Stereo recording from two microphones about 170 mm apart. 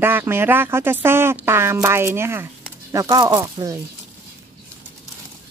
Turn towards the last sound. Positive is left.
turn(degrees=-20)  # may be behind; listen again after turning